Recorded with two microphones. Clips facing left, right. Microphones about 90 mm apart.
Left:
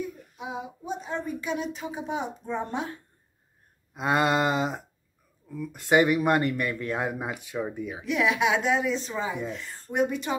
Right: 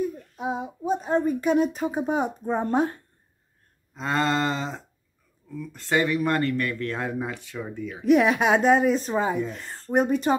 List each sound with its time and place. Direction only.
0.4 s speech: 40° right (ahead or behind)
3.9 s speech: 15° left (ahead or behind)
8.0 s speech: 40° right (ahead or behind)